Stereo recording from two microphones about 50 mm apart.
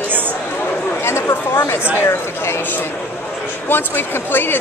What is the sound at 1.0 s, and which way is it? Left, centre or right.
Chatter, left.